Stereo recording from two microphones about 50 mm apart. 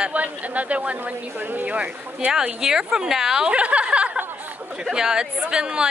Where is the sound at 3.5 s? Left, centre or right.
Right.